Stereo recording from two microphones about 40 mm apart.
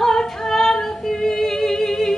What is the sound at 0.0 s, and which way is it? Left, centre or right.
Singing, centre.